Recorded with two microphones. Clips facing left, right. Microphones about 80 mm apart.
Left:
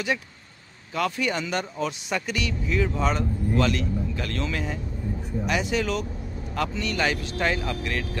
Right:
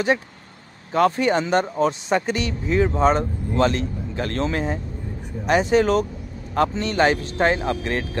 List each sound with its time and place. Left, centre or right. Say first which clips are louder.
0.9 s speech: right 8 dB; right